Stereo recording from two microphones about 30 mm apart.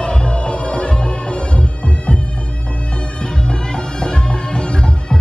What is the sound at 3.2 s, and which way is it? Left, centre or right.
Music, left.